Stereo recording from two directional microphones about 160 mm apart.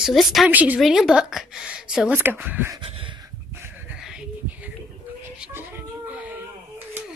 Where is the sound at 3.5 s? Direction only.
15° right (ahead or behind).